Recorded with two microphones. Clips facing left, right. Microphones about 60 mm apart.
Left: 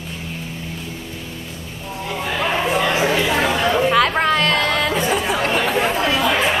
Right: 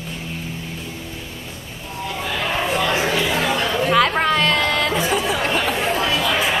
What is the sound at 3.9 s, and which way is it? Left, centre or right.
Chatter, centre.